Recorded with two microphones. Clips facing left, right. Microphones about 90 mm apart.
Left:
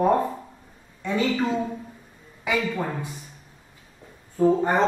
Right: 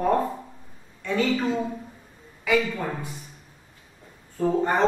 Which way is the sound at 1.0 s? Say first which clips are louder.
Even; 15° left (ahead or behind).